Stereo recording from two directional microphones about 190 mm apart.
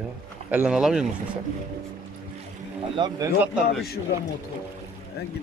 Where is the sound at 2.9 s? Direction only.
20° right (ahead or behind).